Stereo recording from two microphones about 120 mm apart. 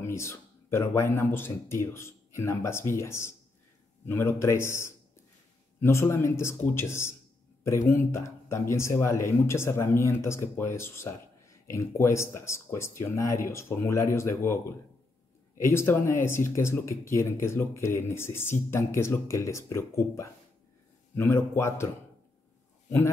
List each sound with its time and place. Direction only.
0.0 s speech: 25° left (ahead or behind)
15.6 s speech: 20° left (ahead or behind)